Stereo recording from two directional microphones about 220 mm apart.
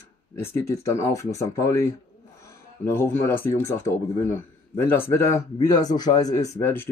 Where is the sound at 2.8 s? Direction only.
10° left (ahead or behind).